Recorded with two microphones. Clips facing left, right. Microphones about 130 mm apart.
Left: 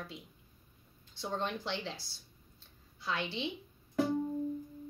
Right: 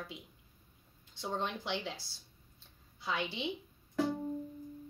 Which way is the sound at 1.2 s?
15° right (ahead or behind).